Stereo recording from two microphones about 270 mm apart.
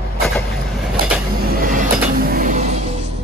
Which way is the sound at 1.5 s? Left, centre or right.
Right.